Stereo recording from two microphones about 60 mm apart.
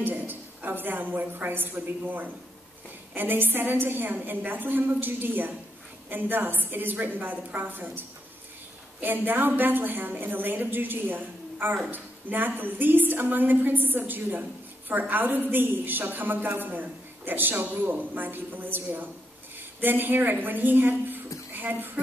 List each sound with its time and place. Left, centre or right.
0.0 s a woman's voice: right
9.0 s a woman's voice: right